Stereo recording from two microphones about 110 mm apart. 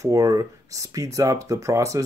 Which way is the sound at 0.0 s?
30° right (ahead or behind).